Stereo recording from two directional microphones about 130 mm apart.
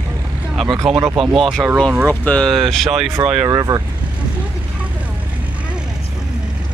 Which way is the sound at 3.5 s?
30° right (ahead or behind).